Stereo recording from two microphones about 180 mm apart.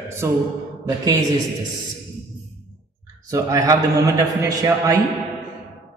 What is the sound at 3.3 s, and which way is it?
A man's voice, 20° right (ahead or behind).